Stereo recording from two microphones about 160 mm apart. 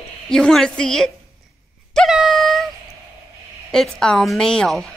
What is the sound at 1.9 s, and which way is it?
Wail, centre (ahead or behind).